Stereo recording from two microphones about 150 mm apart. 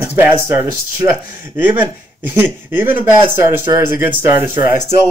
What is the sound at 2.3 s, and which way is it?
Speech, 15° right (ahead or behind).